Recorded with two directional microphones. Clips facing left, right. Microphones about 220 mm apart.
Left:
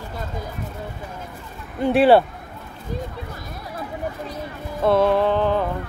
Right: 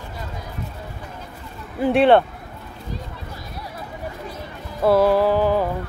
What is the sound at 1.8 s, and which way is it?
Music, centre (ahead or behind).